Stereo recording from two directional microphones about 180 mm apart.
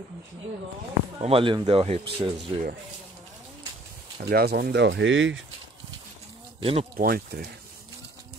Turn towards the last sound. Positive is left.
turn(degrees=-55)  # may be behind; listen again after turning